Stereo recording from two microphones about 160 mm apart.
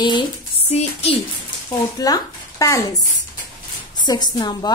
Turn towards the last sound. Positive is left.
turn(degrees=25)  # may be behind; listen again after turning